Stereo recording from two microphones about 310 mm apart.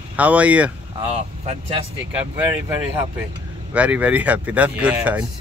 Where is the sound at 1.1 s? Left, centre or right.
Centre.